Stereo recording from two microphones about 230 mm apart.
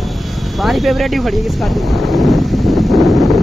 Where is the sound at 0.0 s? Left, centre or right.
Centre.